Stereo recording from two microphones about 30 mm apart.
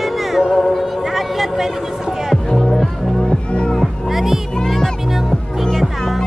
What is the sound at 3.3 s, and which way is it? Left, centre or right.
Music, left.